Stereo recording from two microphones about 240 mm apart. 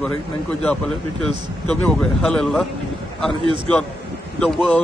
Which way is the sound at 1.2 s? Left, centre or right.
Centre.